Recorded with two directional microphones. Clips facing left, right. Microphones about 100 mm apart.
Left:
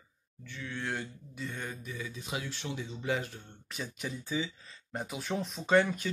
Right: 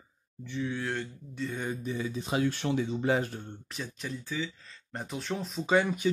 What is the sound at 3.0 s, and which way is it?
Speech, 45° right (ahead or behind).